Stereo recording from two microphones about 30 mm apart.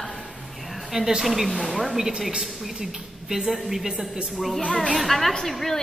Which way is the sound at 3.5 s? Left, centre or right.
Centre.